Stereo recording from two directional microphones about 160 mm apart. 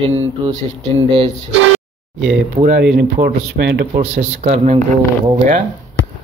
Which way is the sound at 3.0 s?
80° right.